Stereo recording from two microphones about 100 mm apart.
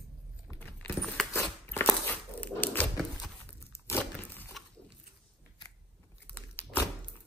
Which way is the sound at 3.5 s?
25° left (ahead or behind).